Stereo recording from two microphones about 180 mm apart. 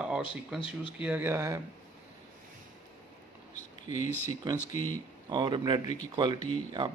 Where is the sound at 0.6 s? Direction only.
30° left (ahead or behind).